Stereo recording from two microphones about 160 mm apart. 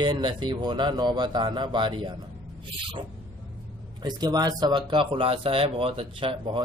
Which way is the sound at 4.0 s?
25° right (ahead or behind).